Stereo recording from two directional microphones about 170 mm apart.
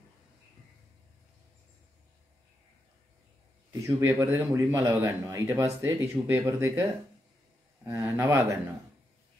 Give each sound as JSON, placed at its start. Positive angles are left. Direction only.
{"t": 3.8, "sound": "speech", "side_deg": -15}